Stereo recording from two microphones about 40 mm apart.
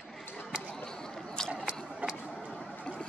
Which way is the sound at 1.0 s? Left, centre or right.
Centre.